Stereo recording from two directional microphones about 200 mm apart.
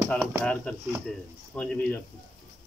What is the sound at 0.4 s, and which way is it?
Speech, 5° left (ahead or behind).